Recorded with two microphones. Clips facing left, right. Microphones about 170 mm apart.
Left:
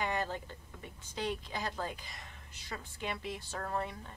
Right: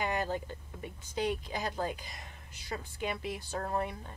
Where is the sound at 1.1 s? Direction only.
15° right (ahead or behind).